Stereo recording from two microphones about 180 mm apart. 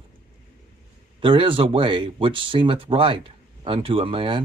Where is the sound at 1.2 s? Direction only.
30° right (ahead or behind).